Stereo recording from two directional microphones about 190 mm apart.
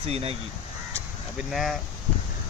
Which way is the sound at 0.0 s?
30° right (ahead or behind).